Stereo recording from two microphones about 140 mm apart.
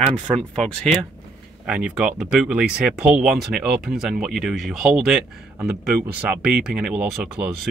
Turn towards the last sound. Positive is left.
turn(degrees=-5)  # may be behind; listen again after turning